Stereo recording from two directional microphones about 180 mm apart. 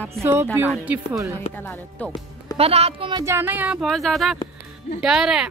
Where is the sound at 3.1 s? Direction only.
15° right (ahead or behind).